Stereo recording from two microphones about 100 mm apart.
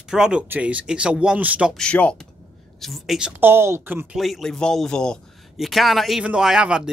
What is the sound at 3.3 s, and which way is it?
Speech, 20° right (ahead or behind).